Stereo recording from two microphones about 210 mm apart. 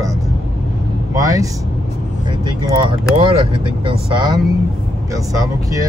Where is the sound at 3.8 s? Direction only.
20° right (ahead or behind).